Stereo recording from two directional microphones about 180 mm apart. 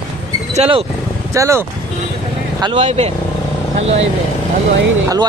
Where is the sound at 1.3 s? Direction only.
15° right (ahead or behind).